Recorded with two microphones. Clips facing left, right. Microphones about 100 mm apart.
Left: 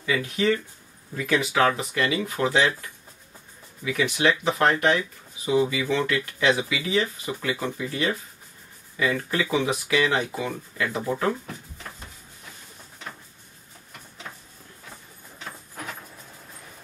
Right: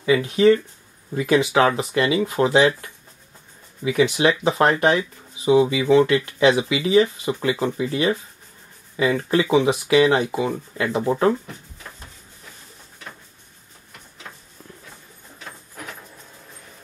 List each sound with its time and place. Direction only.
0.0 s speech: 25° right (ahead or behind)
3.8 s speech: 25° right (ahead or behind)